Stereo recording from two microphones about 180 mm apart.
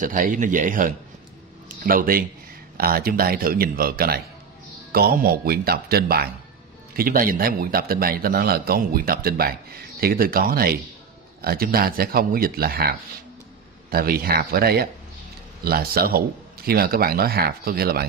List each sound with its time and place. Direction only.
0.0 s a man's voice: 45° right (ahead or behind)